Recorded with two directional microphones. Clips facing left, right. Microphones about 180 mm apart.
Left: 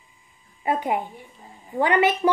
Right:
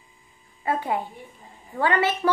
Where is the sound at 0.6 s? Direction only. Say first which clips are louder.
Left 2 dB; 15° left (ahead or behind).